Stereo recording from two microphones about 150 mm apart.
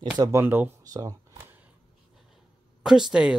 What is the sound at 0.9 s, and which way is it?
Speech, 25° right (ahead or behind).